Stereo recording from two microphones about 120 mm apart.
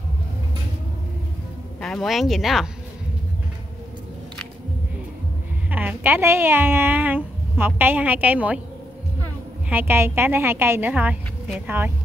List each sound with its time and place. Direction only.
1.8 s speech: 5° left (ahead or behind)
5.7 s a woman's voice: 15° right (ahead or behind)
9.7 s a woman's voice: 15° right (ahead or behind)